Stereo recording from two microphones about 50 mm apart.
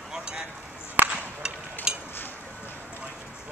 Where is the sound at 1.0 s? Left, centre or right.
Right.